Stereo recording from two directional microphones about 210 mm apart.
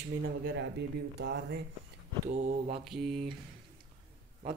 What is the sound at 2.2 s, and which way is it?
Speech, 35° right (ahead or behind).